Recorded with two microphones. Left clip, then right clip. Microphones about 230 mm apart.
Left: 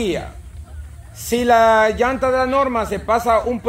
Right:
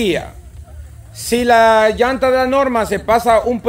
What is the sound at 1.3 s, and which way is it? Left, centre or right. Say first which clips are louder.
Speech: right 3 dB; right.